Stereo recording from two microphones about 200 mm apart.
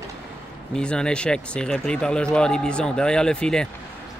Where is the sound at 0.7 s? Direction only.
5° left (ahead or behind).